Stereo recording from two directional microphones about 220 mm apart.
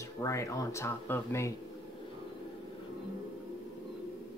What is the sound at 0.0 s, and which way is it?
Speech, 15° left (ahead or behind).